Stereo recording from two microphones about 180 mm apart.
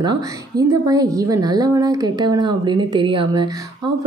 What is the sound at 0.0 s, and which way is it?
A woman's voice, 20° right (ahead or behind).